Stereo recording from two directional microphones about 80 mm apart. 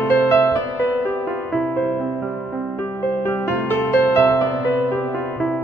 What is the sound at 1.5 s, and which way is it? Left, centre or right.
Music, left.